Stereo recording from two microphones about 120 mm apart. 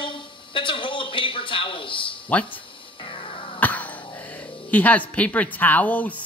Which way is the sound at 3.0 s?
50° left (ahead or behind).